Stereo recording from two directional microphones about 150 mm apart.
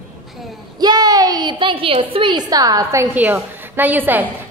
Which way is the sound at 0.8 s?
25° right (ahead or behind).